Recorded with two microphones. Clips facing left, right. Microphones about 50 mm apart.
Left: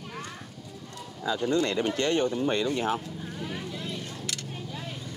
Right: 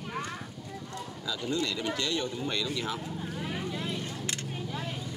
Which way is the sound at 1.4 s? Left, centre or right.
Left.